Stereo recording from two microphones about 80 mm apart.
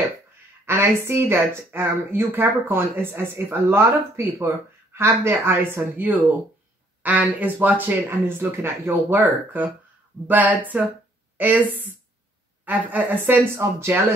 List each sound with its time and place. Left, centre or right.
0.7 s speech: right